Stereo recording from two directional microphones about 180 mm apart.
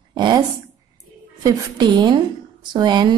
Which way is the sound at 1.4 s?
25° right (ahead or behind).